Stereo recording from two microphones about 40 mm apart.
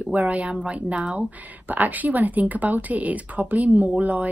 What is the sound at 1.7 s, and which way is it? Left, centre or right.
A woman's voice, right.